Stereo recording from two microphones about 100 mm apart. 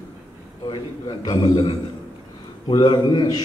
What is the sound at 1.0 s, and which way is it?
Speech, 40° left (ahead or behind).